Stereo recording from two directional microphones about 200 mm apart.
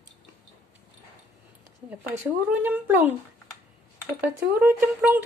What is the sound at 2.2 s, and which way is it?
Speech, 10° right (ahead or behind).